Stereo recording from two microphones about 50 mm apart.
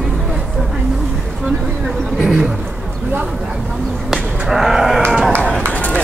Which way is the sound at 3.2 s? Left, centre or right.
Centre.